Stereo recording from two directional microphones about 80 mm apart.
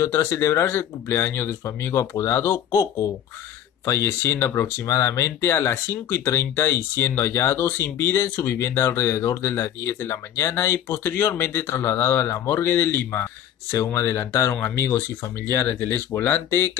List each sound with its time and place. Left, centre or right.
0.0 s speech: left